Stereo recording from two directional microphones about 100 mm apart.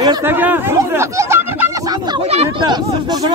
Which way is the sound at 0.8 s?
30° right (ahead or behind).